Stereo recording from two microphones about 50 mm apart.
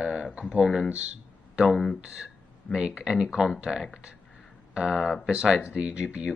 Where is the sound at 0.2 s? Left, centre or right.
Right.